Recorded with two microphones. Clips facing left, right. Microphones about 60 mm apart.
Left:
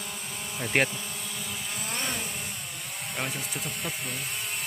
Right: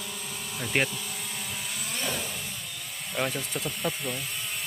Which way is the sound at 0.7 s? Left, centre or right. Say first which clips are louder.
Left 2 dB; left.